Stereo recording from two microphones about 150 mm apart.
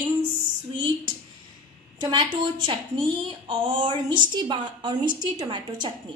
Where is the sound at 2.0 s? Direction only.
30° right (ahead or behind).